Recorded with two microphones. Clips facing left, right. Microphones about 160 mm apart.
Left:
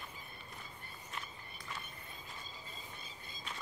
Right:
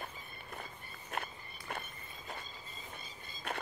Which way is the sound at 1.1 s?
60° right (ahead or behind).